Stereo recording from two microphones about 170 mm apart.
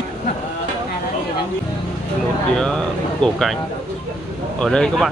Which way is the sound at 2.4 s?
5° left (ahead or behind).